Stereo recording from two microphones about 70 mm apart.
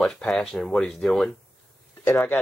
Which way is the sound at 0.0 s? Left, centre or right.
Centre.